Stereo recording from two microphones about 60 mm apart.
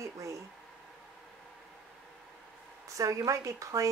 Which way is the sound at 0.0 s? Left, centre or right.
Right.